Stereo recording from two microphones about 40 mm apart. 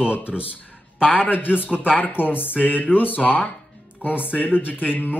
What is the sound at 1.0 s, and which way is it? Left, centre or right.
A man's voice, left.